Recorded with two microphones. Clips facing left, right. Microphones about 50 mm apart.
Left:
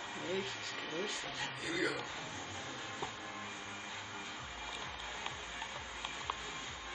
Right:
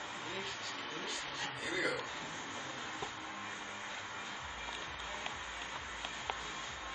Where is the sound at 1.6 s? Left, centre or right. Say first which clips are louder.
Even; centre.